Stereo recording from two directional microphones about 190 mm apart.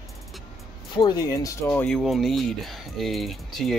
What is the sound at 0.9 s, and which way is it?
Speech, 25° left (ahead or behind).